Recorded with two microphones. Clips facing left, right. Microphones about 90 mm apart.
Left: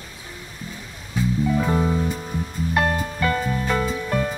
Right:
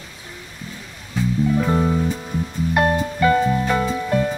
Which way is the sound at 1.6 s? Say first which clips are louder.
Right 2 dB; centre (ahead or behind).